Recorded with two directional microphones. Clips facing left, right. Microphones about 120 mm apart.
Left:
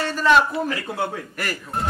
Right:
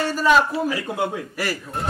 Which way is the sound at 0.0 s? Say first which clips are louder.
Even; 10° right (ahead or behind).